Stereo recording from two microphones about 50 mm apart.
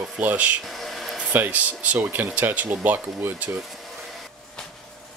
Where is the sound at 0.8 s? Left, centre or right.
Centre.